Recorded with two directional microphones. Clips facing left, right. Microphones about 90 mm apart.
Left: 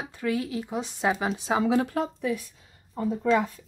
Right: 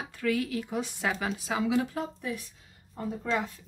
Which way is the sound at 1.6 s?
45° left (ahead or behind).